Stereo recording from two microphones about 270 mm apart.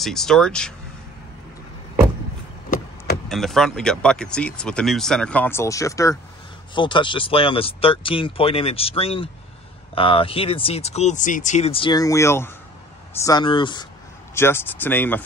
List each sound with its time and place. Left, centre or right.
0.0 s speech: centre
3.3 s speech: centre